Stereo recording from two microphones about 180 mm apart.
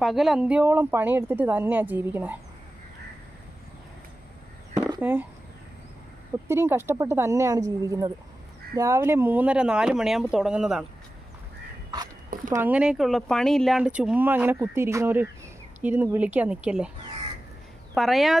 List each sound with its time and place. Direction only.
0.0 s speech: centre (ahead or behind)
6.4 s speech: 15° right (ahead or behind)
12.4 s speech: 10° right (ahead or behind)
17.9 s speech: centre (ahead or behind)